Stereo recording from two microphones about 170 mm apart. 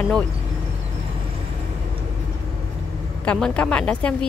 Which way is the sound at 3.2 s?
5° left (ahead or behind).